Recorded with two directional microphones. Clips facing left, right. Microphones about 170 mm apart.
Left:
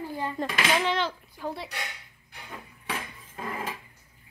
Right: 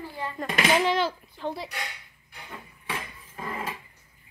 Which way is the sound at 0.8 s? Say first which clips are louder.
Right 3 dB; 10° right (ahead or behind).